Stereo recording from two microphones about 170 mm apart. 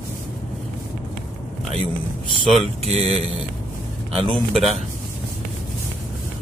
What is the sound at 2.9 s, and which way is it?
Speech, 35° right (ahead or behind).